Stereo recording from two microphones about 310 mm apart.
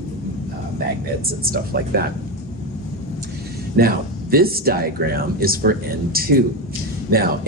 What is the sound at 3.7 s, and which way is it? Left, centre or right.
Speech, right.